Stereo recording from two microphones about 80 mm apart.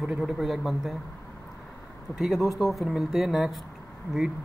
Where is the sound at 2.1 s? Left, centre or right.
Centre.